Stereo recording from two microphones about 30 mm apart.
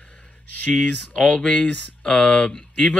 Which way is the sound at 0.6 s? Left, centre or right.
Left.